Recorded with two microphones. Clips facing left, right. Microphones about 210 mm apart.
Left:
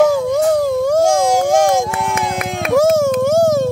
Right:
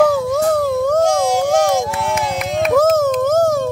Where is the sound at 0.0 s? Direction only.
10° left (ahead or behind).